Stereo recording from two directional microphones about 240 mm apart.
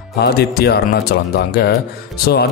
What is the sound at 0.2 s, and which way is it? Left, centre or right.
Speech, left.